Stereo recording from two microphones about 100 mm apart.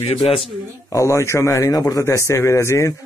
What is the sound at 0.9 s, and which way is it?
Speech, 30° left (ahead or behind).